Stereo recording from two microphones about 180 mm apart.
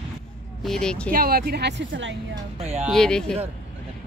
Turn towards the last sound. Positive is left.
turn(degrees=5)  # may be behind; listen again after turning